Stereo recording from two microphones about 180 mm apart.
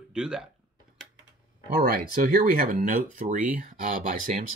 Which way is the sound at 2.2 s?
50° right (ahead or behind).